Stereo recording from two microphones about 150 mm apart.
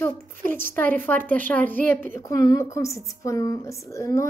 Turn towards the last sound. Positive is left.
turn(degrees=20)  # may be behind; listen again after turning